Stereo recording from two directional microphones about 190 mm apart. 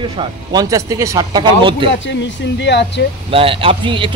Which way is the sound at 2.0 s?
70° left (ahead or behind).